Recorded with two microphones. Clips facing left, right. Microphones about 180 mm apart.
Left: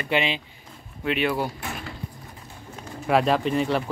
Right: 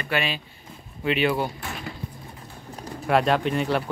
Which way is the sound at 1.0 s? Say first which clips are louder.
Right 1 dB; centre (ahead or behind).